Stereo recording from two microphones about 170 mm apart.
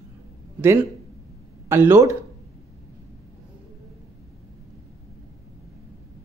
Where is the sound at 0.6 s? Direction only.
15° right (ahead or behind).